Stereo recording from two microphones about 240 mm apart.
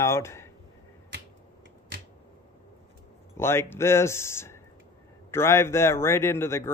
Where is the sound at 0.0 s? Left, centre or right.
Centre.